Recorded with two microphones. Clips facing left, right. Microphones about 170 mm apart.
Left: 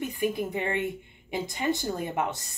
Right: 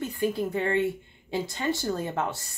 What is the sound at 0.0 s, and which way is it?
Speech, 20° left (ahead or behind).